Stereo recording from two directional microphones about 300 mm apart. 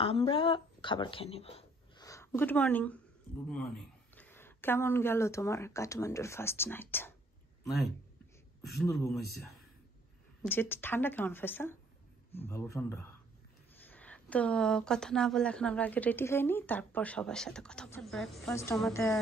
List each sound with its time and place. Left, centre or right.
0.0 s speech: centre
4.1 s speech: centre
8.9 s a woman's voice: centre
10.4 s a woman's voice: centre